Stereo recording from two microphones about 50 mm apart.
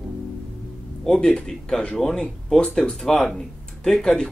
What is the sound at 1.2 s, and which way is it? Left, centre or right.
A man's voice, centre.